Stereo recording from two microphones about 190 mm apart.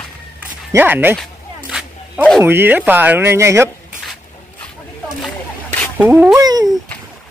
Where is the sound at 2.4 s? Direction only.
10° right (ahead or behind).